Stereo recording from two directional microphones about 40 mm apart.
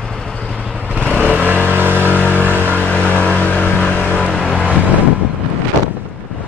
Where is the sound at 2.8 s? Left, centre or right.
Left.